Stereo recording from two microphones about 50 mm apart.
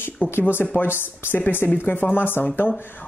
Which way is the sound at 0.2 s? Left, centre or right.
Left.